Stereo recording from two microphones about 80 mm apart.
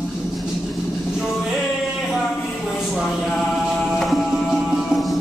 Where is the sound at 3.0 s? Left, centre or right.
Centre.